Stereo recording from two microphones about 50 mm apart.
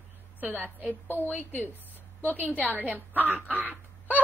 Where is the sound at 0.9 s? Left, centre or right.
Left.